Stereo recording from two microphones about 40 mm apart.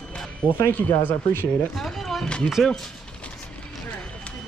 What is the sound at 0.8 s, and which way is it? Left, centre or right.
Speech, left.